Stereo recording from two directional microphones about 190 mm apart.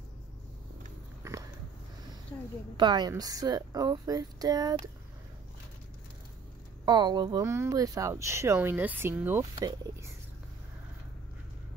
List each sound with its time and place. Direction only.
2.8 s a woman's voice: 20° right (ahead or behind)
6.9 s speech: 20° right (ahead or behind)